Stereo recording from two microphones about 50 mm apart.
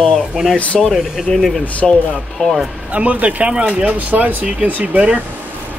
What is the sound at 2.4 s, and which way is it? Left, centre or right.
Speech, left.